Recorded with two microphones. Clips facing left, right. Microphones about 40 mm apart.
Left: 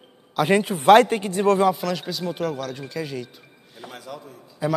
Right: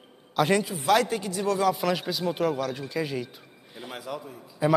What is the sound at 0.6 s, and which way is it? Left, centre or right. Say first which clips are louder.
Speech: left 9 dB; left.